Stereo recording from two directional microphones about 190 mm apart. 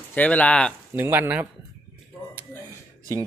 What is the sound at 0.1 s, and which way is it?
Speech, 10° left (ahead or behind).